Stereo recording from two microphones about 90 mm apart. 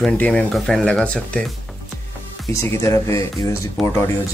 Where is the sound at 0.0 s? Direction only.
10° left (ahead or behind).